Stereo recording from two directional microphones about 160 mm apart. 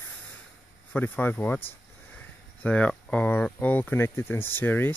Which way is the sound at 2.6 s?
10° left (ahead or behind).